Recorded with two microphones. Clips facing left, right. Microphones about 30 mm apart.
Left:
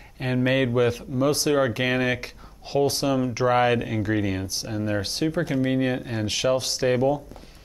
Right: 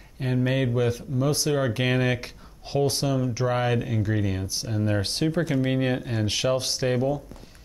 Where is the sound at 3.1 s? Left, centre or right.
Centre.